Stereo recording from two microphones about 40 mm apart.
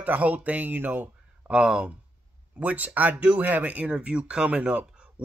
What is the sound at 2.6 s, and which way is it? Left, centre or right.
Speech, right.